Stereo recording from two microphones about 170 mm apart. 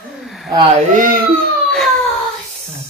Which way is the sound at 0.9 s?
55° right (ahead or behind).